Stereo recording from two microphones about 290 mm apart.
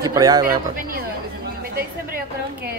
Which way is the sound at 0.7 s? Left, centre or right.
Right.